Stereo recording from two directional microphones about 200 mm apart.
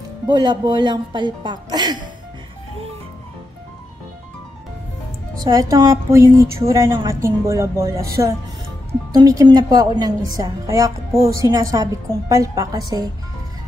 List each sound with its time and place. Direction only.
0.3 s a woman's voice: 20° right (ahead or behind)
5.4 s a woman's voice: 15° right (ahead or behind)